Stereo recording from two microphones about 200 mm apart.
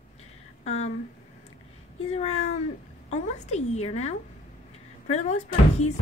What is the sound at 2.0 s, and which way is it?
A woman's voice, 30° left (ahead or behind).